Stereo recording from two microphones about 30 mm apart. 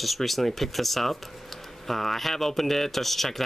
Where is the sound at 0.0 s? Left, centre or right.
Centre.